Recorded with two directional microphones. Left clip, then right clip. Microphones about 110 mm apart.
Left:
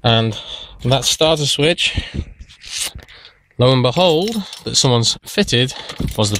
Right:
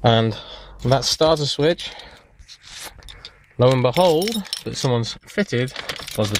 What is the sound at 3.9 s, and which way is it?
Speech, 30° left (ahead or behind).